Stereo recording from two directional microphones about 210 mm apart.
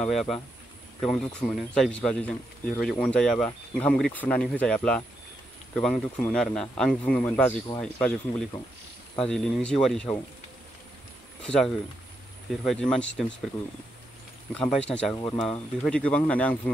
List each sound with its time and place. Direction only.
0.0 s speech: centre (ahead or behind)
12.4 s speech: centre (ahead or behind)
14.5 s speech: 5° left (ahead or behind)
15.1 s speech: 20° left (ahead or behind)
15.4 s speech: 5° left (ahead or behind)